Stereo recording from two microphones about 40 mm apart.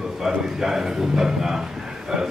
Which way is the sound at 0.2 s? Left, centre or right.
Centre.